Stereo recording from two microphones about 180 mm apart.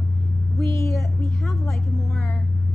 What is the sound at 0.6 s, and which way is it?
Speech, 15° left (ahead or behind).